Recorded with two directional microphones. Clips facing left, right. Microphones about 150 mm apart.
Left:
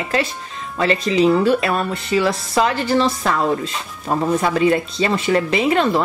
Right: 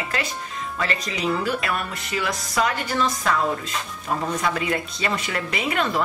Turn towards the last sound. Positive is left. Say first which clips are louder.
# left 7 dB
turn(degrees=30)  # may be behind; listen again after turning